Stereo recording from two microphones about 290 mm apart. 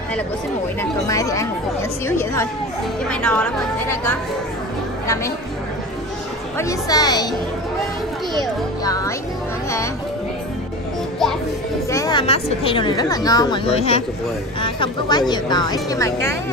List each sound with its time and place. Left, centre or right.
1.0 s speech: centre
6.6 s speech: centre
8.8 s speech: centre
11.9 s speech: centre